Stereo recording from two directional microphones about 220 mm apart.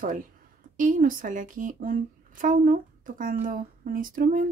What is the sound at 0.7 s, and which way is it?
Speech, 35° right (ahead or behind).